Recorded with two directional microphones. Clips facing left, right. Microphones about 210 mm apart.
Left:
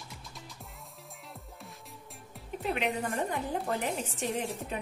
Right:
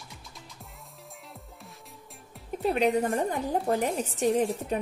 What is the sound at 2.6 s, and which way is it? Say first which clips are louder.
A woman's voice: right 7 dB; 40° right (ahead or behind).